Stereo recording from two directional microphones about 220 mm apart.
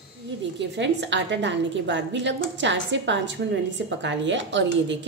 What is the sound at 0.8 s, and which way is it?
A woman's voice, 55° right (ahead or behind).